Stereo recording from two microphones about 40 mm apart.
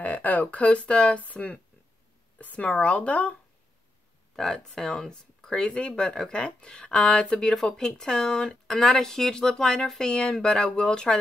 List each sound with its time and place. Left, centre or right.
0.0 s speech: left
4.4 s speech: centre